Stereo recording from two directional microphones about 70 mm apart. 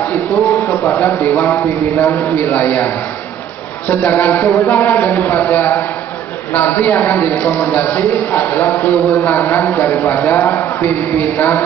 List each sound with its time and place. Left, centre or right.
0.9 s a man's voice: left